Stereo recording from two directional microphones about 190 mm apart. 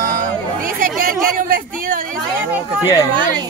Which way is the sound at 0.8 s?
50° right (ahead or behind).